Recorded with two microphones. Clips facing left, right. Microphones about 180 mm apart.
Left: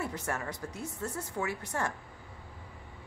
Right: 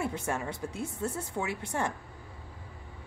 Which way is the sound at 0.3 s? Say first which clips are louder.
Right 3 dB; 25° right (ahead or behind).